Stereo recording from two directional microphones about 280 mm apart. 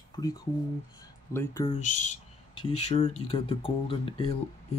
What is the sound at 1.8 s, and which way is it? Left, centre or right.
Speech, left.